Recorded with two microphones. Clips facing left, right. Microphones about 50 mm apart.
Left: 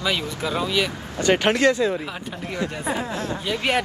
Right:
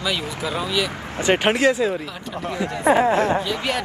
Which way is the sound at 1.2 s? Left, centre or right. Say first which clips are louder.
Even; centre.